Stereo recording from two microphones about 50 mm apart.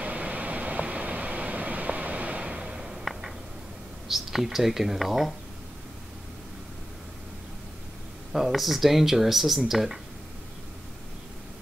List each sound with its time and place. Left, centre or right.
0.0 s vehicle: right; by 3.0 s centre
4.1 s speech: centre
8.3 s speech: centre